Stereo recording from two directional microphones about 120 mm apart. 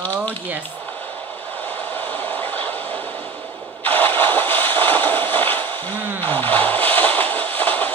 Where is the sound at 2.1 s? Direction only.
15° left (ahead or behind).